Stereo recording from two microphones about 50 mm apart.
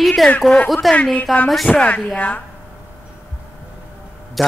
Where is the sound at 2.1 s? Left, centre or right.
Left.